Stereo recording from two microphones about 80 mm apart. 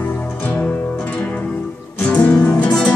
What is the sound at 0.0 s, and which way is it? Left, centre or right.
Music, left.